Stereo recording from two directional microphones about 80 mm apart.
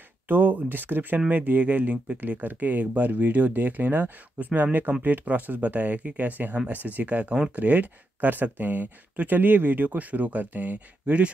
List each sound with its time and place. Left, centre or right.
0.3 s speech: right